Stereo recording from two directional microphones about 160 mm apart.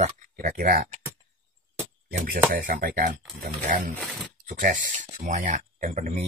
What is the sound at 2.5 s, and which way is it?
Speech, 60° right (ahead or behind).